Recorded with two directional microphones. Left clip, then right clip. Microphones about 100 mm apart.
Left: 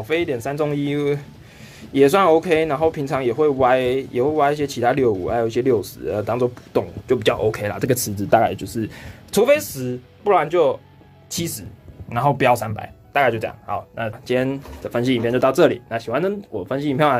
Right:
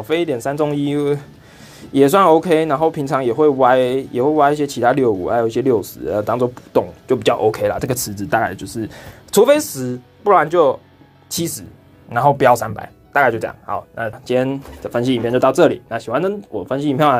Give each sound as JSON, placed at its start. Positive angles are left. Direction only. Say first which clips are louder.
{"t": 0.0, "sound": "speech", "louder": "right 3 dB", "side_deg": -30}
{"t": 9.3, "sound": "speech", "louder": "right 4 dB", "side_deg": -35}